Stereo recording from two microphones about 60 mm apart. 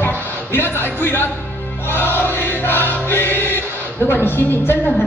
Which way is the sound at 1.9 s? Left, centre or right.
Left.